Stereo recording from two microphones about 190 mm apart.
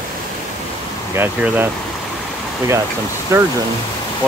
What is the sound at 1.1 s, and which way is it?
Speech, 10° right (ahead or behind).